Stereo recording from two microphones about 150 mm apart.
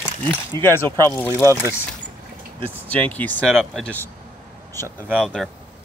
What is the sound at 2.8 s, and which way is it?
Speech, 10° left (ahead or behind).